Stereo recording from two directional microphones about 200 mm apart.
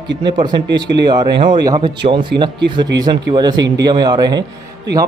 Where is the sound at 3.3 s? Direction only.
20° right (ahead or behind).